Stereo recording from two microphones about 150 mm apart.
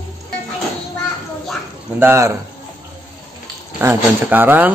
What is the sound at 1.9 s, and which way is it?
Speech, 15° right (ahead or behind).